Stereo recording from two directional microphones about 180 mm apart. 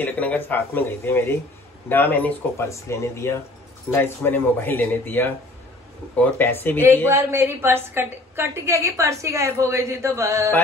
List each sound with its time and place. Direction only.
0.0 s speech: 10° left (ahead or behind)
7.1 s a woman's voice: 15° right (ahead or behind)